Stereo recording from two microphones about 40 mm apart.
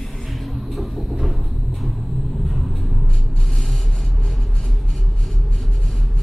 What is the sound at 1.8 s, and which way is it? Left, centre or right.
Vehicle, centre.